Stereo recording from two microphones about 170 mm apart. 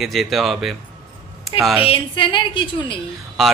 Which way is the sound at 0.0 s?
Centre (ahead or behind).